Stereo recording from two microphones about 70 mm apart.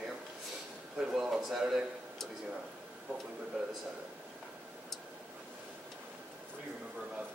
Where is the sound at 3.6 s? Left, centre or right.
Centre.